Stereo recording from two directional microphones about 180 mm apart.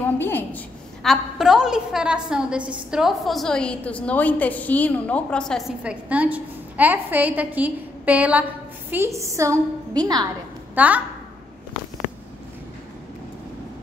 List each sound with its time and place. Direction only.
0.0 s a sound: 10° left (ahead or behind)
1.0 s a woman's voice: centre (ahead or behind); by 10.2 s 20° right (ahead or behind)
10.7 s a woman's voice: 10° right (ahead or behind)